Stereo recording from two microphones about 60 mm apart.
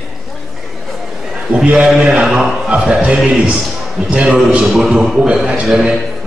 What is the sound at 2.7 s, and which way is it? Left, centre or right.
A man's voice, centre.